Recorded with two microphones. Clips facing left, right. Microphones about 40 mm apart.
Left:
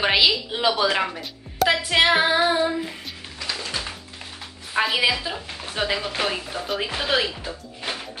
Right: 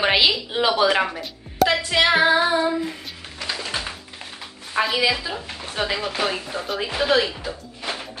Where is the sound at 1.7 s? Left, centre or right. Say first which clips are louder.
Left 3 dB; centre.